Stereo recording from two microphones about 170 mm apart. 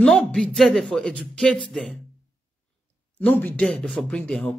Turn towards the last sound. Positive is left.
turn(degrees=5)  # may be behind; listen again after turning